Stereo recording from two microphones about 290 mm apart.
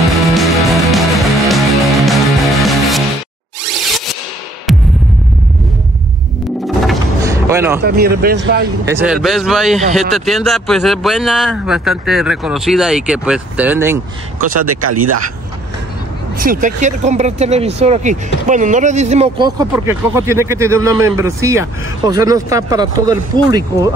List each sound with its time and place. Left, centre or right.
0.3 s music: centre
4.7 s music: centre
7.2 s music: centre
7.8 s speech: right
8.8 s speech: centre
14.4 s speech: right
16.3 s speech: right; by 23.9 s centre